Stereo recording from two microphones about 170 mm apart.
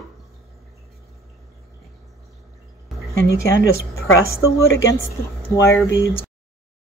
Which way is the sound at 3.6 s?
60° right (ahead or behind).